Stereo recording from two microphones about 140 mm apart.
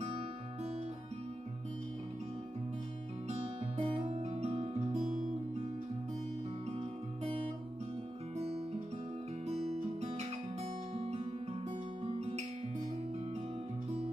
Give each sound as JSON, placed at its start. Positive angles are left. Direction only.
{"t": 3.3, "sound": "music", "side_deg": -45}
{"t": 8.4, "sound": "guitar", "side_deg": -50}
{"t": 11.7, "sound": "music", "side_deg": -45}